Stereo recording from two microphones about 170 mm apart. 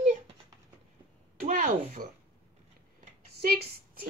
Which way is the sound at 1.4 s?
50° right (ahead or behind).